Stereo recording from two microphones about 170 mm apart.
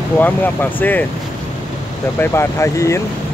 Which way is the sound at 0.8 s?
10° left (ahead or behind).